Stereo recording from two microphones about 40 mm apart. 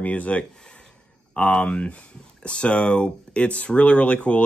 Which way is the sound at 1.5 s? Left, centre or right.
Left.